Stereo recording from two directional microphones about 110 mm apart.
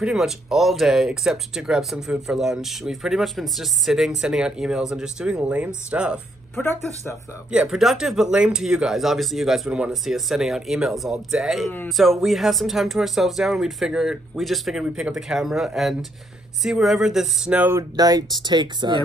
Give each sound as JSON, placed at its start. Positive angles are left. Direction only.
{"t": 0.0, "sound": "speech", "side_deg": -5}
{"t": 6.5, "sound": "speech", "side_deg": 20}
{"t": 7.5, "sound": "speech", "side_deg": -5}
{"t": 17.6, "sound": "speech", "side_deg": -20}
{"t": 17.9, "sound": "speech", "side_deg": -35}